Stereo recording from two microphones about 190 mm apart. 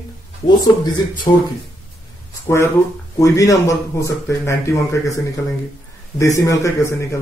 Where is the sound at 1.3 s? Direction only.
25° left (ahead or behind).